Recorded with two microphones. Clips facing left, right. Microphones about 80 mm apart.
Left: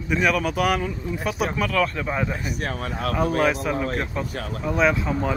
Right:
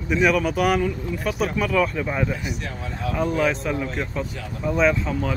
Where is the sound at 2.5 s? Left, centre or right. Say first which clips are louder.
Left 3 dB; left.